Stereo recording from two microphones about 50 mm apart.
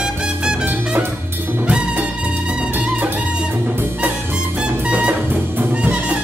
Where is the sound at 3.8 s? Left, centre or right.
Right.